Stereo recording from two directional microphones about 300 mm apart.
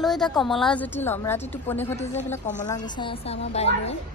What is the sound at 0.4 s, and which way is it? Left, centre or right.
A woman's voice, centre.